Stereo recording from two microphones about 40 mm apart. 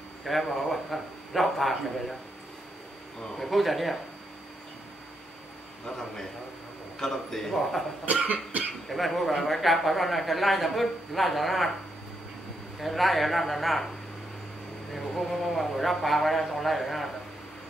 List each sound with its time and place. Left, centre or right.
0.2 s a man's voice: centre
3.3 s a man's voice: centre
7.0 s a man's voice: centre
8.0 s cough: right
8.8 s a man's voice: centre
12.8 s a man's voice: centre
15.0 s a man's voice: centre